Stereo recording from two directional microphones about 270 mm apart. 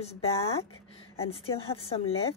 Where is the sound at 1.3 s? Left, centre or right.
Left.